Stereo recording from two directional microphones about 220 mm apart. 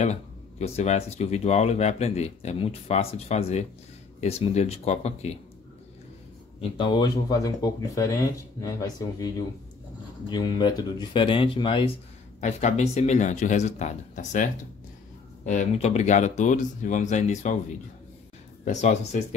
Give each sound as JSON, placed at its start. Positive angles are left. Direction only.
{"t": 0.0, "sound": "speech", "side_deg": 30}
{"t": 6.8, "sound": "speech", "side_deg": 20}
{"t": 10.3, "sound": "speech", "side_deg": 20}
{"t": 18.7, "sound": "speech", "side_deg": 30}